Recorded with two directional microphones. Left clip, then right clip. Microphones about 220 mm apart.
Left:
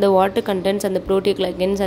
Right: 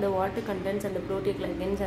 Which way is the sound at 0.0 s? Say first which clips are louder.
Left 12 dB; 45° left (ahead or behind).